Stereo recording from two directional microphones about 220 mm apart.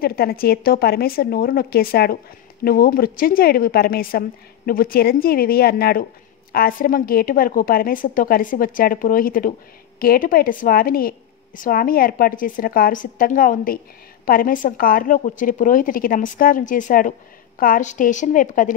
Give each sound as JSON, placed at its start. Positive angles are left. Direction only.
{"t": 0.0, "sound": "a woman's voice", "side_deg": 45}